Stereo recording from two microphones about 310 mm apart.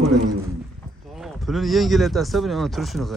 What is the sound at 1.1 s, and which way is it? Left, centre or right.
Speech, centre.